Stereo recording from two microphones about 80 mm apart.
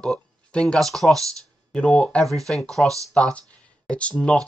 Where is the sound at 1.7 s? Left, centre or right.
Centre.